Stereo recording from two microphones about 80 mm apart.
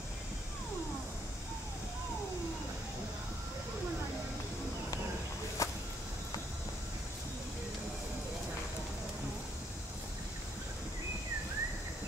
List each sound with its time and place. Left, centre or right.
5.6 s whip: left